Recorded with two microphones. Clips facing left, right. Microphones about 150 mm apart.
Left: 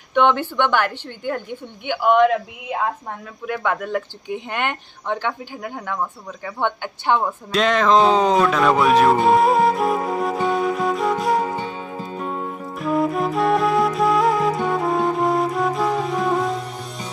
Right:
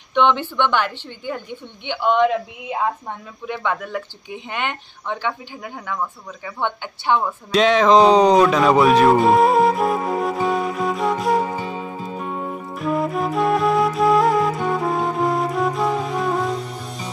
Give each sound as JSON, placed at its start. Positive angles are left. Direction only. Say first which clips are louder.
{"t": 0.6, "sound": "a woman's voice", "louder": "left 1 dB", "side_deg": 15}
{"t": 6.6, "sound": "a woman's voice", "louder": "left 1 dB", "side_deg": 15}
{"t": 7.5, "sound": "speech", "louder": "right 3 dB", "side_deg": 0}
{"t": 8.2, "sound": "speech", "louder": "right 4 dB", "side_deg": -15}
{"t": 8.5, "sound": "speech", "louder": "right 2 dB", "side_deg": 0}
{"t": 12.7, "sound": "music", "louder": "left 2 dB", "side_deg": 0}